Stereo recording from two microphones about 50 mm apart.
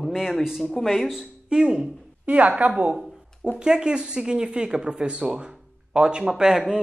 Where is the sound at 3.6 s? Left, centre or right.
Centre.